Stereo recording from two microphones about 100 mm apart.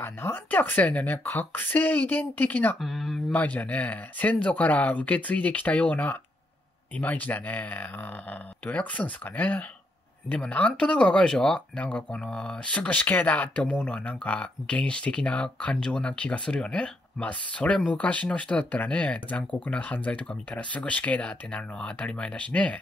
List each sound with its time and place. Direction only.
0.0 s speech: 20° left (ahead or behind)
2.8 s speech: centre (ahead or behind)
3.3 s speech: 15° left (ahead or behind)